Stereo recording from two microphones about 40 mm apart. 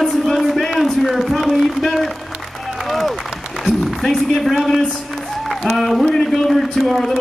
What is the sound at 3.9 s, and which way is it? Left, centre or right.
A man's voice, centre.